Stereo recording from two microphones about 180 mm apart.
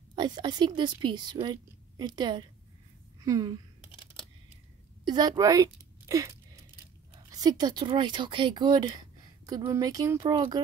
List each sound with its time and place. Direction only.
0.1 s a woman's voice: 25° right (ahead or behind)
3.2 s a sound: 20° right (ahead or behind)
5.0 s speech: 20° right (ahead or behind)